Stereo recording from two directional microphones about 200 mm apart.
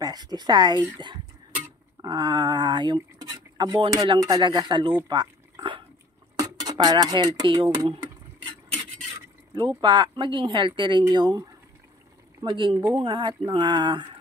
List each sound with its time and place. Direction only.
0.0 s speech: 20° right (ahead or behind)
5.0 s a sound: 20° right (ahead or behind)
6.3 s speech: 20° right (ahead or behind)
9.6 s speech: 25° right (ahead or behind)